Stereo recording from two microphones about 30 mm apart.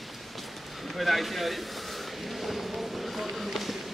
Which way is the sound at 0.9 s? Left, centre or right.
Centre.